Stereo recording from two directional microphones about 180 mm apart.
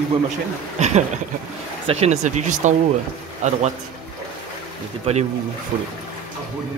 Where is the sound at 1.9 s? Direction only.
35° right (ahead or behind).